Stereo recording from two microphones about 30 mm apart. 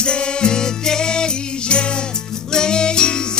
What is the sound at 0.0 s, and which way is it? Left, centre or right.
Music, left.